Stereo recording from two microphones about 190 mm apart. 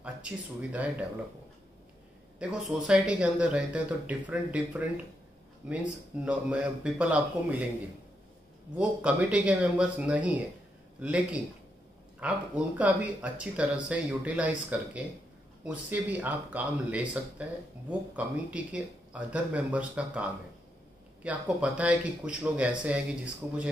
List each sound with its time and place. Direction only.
0.0 s speech: 5° right (ahead or behind)
2.3 s speech: 5° right (ahead or behind)
8.7 s speech: 5° right (ahead or behind)